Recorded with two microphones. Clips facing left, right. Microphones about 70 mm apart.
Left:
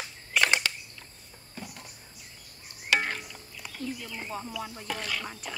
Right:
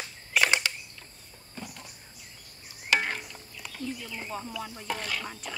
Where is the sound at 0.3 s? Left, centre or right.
Centre.